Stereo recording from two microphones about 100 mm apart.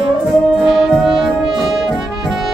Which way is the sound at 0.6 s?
5° right (ahead or behind).